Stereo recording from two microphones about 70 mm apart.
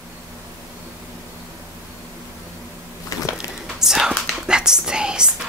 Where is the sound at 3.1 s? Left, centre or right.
Left.